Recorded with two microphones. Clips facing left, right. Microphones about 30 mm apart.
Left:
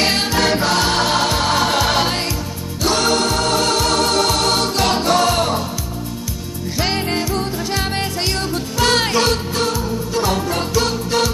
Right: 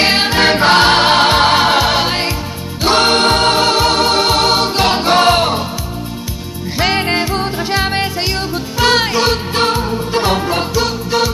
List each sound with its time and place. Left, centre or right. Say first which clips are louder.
0.0 s music: right 5 dB; right
2.8 s music: right 5 dB; right
7.0 s music: right 4 dB; right; by 9.4 s centre
9.5 s music: right 5 dB; right
10.7 s music: right 2 dB; centre